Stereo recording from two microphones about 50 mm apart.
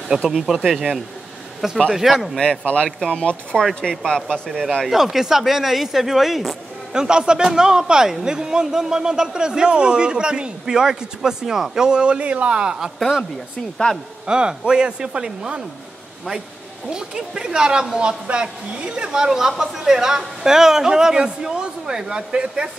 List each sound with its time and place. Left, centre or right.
0.1 s a man's voice: centre
1.9 s speech: centre
2.3 s speech: centre
2.6 s speech: left
3.5 s speech: centre
4.8 s speech: centre
6.9 s a man's voice: centre
13.9 s speech: centre
14.2 s speech: centre
16.9 s a man's voice: centre